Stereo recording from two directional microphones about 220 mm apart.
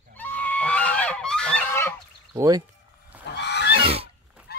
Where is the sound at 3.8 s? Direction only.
25° right (ahead or behind).